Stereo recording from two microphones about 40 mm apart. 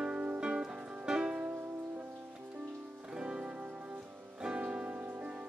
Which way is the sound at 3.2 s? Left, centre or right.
Right.